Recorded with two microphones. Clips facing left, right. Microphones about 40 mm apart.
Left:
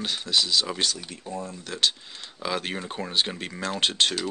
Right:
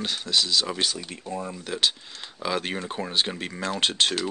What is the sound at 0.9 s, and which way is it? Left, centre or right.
Speech, centre.